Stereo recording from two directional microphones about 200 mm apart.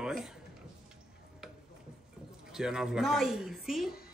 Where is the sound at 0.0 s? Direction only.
Centre (ahead or behind).